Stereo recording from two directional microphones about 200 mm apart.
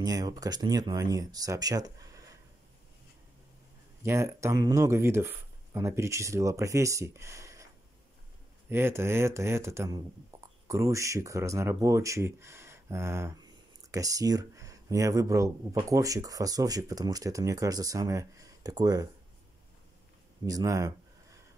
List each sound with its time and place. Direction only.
0.0 s speech: 20° right (ahead or behind)
4.0 s speech: 15° right (ahead or behind)
8.6 s speech: 10° right (ahead or behind)
20.4 s a sound: 15° right (ahead or behind)